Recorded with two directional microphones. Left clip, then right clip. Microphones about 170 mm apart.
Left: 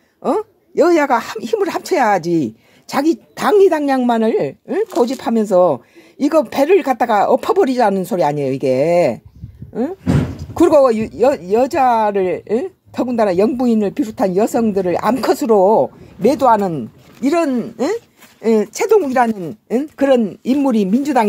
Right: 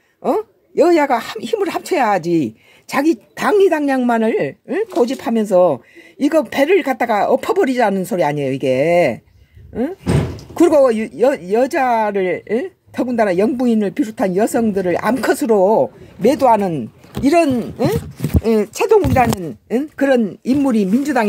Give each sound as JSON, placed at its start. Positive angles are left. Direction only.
{"t": 0.2, "sound": "speech", "side_deg": 0}
{"t": 10.5, "sound": "speech", "side_deg": 0}
{"t": 18.4, "sound": "speech", "side_deg": 0}